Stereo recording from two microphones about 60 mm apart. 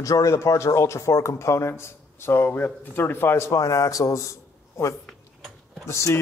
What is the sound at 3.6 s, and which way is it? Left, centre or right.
Speech, left.